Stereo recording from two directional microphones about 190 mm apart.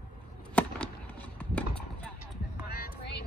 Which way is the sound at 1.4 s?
5° left (ahead or behind).